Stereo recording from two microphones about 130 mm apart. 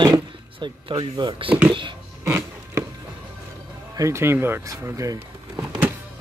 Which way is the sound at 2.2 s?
20° right (ahead or behind).